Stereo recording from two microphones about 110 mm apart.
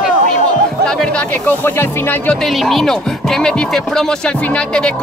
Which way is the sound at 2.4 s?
Centre (ahead or behind).